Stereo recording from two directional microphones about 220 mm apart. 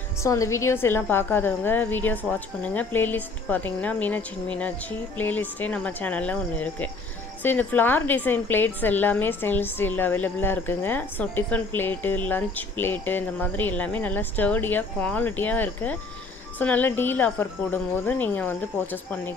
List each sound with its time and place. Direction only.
0.2 s a woman's voice: 15° left (ahead or behind)